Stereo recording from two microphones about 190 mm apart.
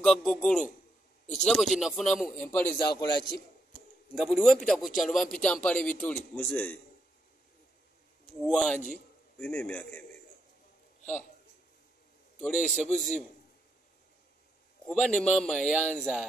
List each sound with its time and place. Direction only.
0.0 s a man's voice: centre (ahead or behind)
2.8 s a man's voice: 20° left (ahead or behind)
4.1 s a man's voice: centre (ahead or behind)
8.5 s a man's voice: centre (ahead or behind)
12.4 s a man's voice: 5° left (ahead or behind)
14.9 s a man's voice: centre (ahead or behind)